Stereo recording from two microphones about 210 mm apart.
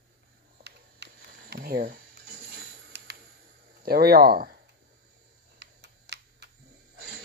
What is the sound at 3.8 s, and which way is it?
Speech, 45° right (ahead or behind).